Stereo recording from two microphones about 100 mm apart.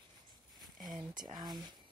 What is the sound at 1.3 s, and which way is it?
Speech, 45° right (ahead or behind).